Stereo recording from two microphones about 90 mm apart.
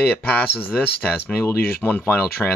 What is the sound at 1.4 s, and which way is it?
Speech, 20° left (ahead or behind).